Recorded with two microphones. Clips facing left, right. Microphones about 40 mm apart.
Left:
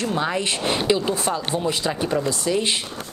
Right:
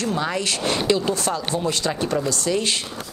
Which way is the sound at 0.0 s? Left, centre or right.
Left.